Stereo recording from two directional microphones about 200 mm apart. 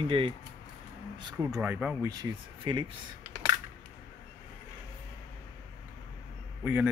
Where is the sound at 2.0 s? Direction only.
20° right (ahead or behind).